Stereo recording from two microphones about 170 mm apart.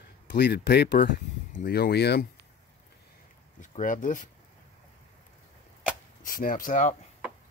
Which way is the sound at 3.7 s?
50° left (ahead or behind).